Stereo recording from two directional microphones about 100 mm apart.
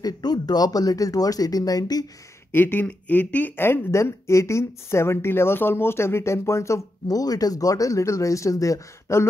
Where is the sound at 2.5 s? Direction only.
20° left (ahead or behind).